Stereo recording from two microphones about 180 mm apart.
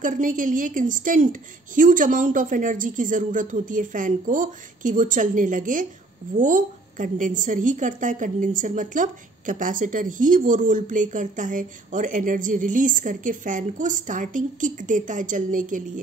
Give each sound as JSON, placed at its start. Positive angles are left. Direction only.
{"t": 0.0, "sound": "a woman's voice", "side_deg": -45}